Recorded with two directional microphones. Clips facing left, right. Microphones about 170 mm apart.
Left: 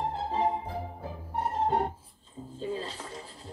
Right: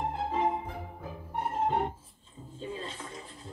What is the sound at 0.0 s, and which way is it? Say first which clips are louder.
Music: left 1 dB; 35° left (ahead or behind).